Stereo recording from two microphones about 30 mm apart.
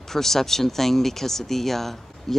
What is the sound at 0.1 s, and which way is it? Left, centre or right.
Speech, centre.